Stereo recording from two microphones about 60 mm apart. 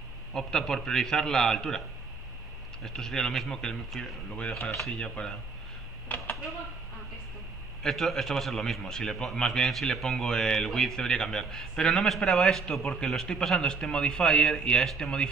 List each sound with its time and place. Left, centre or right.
0.3 s a man's voice: centre
2.8 s a man's voice: centre
6.0 s a sound: left
7.8 s a man's voice: centre